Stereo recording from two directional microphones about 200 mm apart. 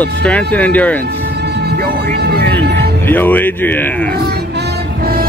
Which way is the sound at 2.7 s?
10° left (ahead or behind).